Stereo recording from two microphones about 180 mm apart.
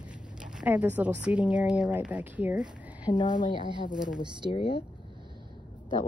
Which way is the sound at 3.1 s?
25° left (ahead or behind).